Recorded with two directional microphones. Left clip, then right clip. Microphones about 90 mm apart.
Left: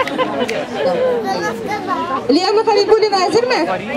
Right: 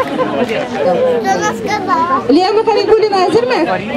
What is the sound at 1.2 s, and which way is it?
Speech, 45° right (ahead or behind).